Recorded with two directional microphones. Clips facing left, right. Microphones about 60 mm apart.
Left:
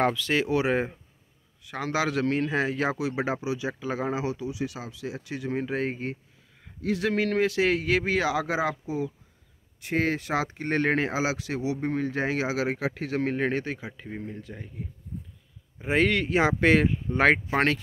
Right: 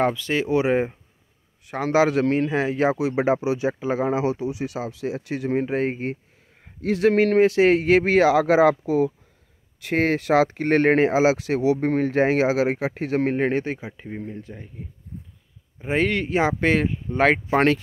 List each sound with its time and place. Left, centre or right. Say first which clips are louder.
0.0 s speech: right 2 dB; centre
1.7 s a man's voice: right 8 dB; right
3.4 s speech: right 7 dB; right
3.8 s speech: right 6 dB; right
5.5 s a man's voice: right 5 dB; right
6.8 s speech: right 8 dB; right
9.8 s speech: right 6 dB; right
11.1 s speech: right 9 dB; right
11.6 s speech: right 7 dB; right
12.5 s a man's voice: right 5 dB; right
13.9 s speech: right 4 dB; centre
15.8 s speech: right 1 dB; centre
17.5 s speech: right 6 dB; centre